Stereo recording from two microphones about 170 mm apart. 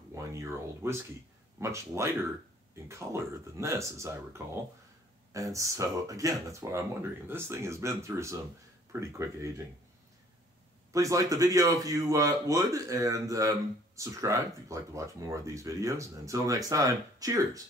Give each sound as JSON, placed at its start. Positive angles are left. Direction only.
{"t": 0.1, "sound": "speech", "side_deg": -20}
{"t": 10.9, "sound": "speech", "side_deg": -20}